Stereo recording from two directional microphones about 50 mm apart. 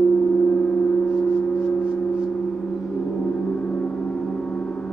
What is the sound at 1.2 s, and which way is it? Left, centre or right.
Gong, centre.